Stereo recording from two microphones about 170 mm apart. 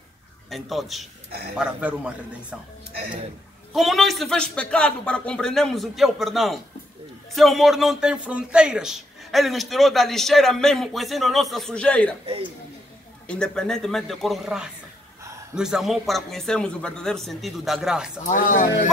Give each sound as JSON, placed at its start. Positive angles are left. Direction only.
{"t": 0.5, "sound": "a man's voice", "side_deg": 0}
{"t": 3.7, "sound": "a man's voice", "side_deg": 0}
{"t": 13.3, "sound": "a man's voice", "side_deg": 5}
{"t": 18.2, "sound": "speech", "side_deg": 50}